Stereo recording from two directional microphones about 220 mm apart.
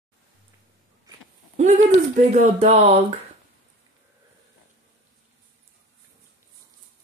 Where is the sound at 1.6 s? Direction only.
35° right (ahead or behind).